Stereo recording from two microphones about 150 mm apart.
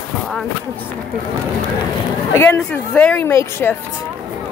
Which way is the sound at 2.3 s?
15° left (ahead or behind).